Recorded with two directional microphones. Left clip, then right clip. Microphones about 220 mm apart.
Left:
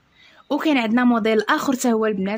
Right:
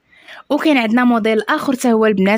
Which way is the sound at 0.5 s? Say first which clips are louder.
Right 5 dB; 25° right (ahead or behind).